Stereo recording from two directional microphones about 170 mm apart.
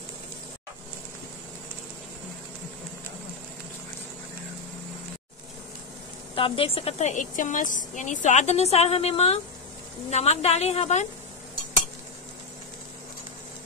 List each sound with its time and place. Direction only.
6.3 s a woman's voice: 30° left (ahead or behind)